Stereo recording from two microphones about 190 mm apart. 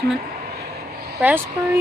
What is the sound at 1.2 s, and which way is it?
Speech, 10° right (ahead or behind).